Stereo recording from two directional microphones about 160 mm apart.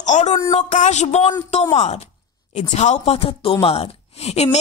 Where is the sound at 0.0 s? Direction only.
50° left (ahead or behind).